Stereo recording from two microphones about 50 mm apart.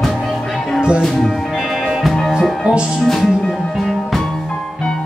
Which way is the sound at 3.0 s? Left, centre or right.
Centre.